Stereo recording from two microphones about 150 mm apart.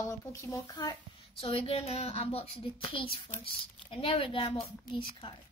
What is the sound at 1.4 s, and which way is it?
Speech, 40° left (ahead or behind).